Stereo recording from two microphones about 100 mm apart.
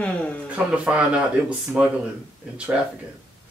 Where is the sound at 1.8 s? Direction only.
15° right (ahead or behind).